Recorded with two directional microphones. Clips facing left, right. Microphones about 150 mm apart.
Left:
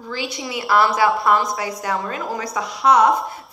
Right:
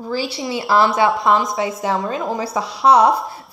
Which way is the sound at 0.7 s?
30° right (ahead or behind).